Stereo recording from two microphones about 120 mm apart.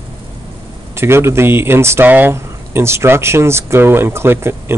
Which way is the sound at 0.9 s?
20° right (ahead or behind).